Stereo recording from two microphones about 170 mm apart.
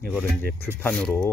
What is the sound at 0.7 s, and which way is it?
Speech, 10° left (ahead or behind).